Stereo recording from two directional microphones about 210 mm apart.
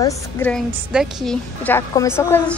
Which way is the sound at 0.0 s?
10° left (ahead or behind).